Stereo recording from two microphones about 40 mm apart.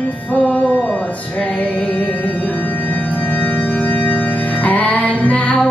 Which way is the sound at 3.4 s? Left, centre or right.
Left.